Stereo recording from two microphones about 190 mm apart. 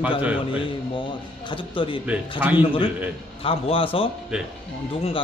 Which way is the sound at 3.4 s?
30° left (ahead or behind).